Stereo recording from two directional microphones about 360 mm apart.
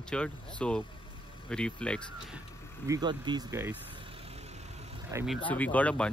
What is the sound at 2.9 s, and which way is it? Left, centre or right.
Speech, centre.